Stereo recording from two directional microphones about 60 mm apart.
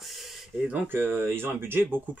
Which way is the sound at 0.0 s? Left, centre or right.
Centre.